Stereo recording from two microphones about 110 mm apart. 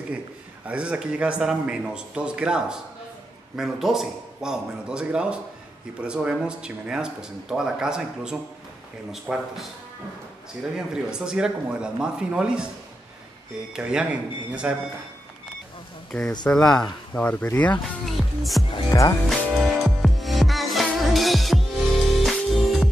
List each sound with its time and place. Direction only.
0.7 s speech: 10° right (ahead or behind)
10.9 s speech: 5° right (ahead or behind)
13.7 s speech: 10° right (ahead or behind)
16.1 s speech: 5° left (ahead or behind)
18.0 s music: centre (ahead or behind)
18.9 s speech: 25° left (ahead or behind)
19.2 s music: centre (ahead or behind)